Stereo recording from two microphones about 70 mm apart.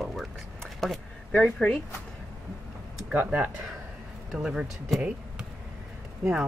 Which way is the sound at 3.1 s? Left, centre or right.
Centre.